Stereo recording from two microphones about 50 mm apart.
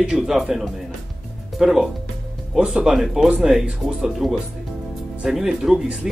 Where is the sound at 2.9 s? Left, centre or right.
Centre.